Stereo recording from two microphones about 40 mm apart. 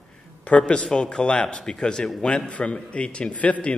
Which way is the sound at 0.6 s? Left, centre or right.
Left.